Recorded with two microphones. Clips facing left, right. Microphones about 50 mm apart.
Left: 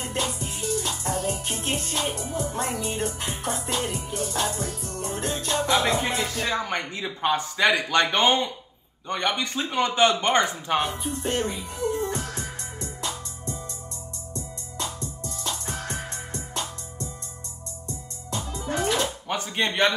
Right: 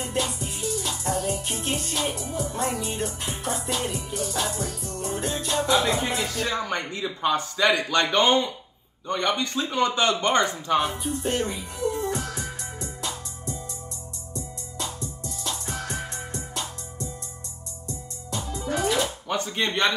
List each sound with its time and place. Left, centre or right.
0.1 s music: left
1.1 s music: centre
1.4 s music: left
7.2 s a man's voice: left
14.3 s music: left
19.6 s a man's voice: centre